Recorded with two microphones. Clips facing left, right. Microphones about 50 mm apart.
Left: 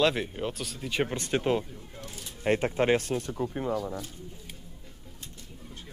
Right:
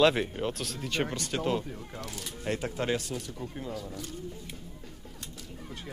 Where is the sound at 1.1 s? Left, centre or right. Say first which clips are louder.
Left 3 dB; left.